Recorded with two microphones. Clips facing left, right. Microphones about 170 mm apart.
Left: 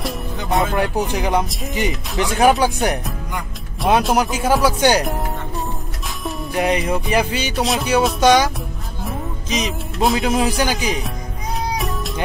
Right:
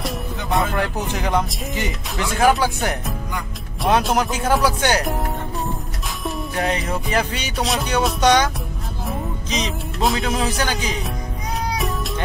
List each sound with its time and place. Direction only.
0.0 s music: centre (ahead or behind)
0.7 s speech: 15° left (ahead or behind)
3.8 s speech: centre (ahead or behind)
6.5 s music: 15° left (ahead or behind)
6.9 s speech: 10° left (ahead or behind)
7.3 s speech: centre (ahead or behind)
9.5 s speech: 5° left (ahead or behind)